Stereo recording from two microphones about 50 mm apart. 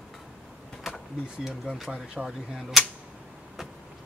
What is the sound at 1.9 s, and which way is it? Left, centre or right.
Speech, centre.